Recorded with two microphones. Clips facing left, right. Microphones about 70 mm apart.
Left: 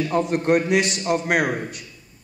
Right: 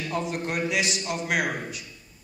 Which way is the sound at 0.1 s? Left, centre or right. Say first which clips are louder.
Left 9 dB; left.